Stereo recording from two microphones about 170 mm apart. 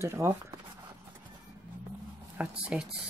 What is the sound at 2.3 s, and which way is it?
Speech, 10° right (ahead or behind).